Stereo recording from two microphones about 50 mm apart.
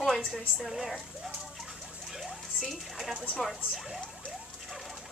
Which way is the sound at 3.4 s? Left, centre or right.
Centre.